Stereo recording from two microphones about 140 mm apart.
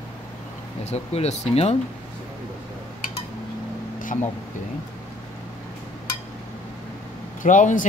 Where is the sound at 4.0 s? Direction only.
70° left (ahead or behind).